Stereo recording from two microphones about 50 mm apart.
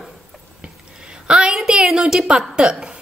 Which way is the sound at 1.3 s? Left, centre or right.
Centre.